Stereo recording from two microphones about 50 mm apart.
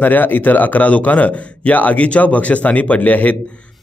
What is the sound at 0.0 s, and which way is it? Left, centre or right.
A man's voice, left.